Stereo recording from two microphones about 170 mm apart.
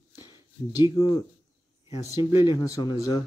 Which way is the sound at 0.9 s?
20° left (ahead or behind).